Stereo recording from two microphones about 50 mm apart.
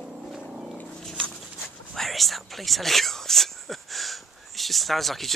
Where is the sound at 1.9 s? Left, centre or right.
Centre.